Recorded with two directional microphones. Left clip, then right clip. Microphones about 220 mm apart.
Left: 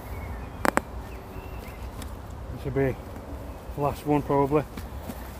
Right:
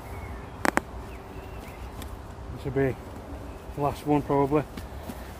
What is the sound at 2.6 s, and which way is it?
Speech, centre (ahead or behind).